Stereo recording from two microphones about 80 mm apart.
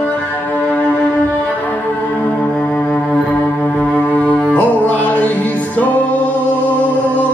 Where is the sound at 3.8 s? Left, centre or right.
Centre.